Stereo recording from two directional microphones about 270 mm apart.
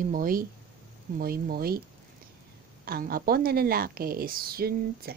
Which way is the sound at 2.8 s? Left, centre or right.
Right.